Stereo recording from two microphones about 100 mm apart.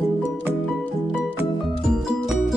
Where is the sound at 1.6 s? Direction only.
Centre (ahead or behind).